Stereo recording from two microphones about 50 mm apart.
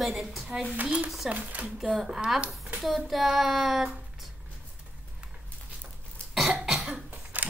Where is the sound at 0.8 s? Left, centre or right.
Right.